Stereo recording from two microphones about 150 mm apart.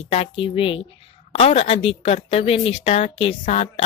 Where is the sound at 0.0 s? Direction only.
40° left (ahead or behind).